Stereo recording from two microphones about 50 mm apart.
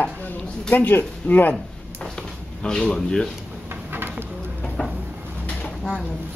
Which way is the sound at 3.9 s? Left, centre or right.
Right.